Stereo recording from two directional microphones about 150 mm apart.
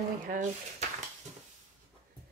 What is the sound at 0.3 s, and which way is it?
Speech, 55° right (ahead or behind).